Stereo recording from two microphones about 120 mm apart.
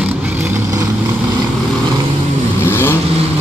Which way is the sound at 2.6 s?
20° left (ahead or behind).